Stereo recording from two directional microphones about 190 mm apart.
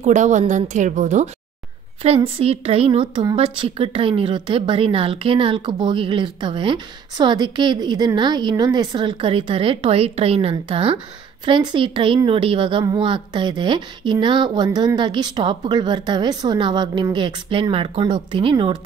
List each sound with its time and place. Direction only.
0.0 s a woman's voice: 40° right (ahead or behind)